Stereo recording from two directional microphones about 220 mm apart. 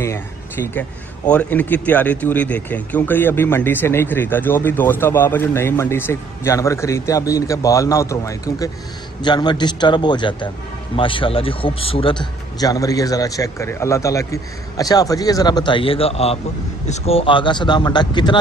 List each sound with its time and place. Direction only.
0.0 s a man's voice: 10° left (ahead or behind)